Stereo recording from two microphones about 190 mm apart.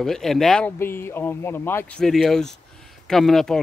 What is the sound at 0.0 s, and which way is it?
Speech, centre (ahead or behind).